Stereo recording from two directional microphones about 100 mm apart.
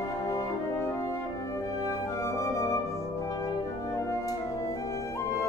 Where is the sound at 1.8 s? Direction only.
30° left (ahead or behind).